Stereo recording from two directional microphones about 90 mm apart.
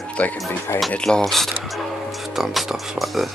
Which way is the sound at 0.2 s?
15° left (ahead or behind).